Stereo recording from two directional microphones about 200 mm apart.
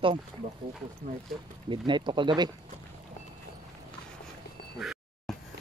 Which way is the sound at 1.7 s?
25° right (ahead or behind).